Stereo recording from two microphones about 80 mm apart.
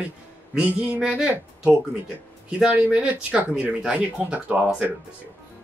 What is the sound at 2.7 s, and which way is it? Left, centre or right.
Speech, centre.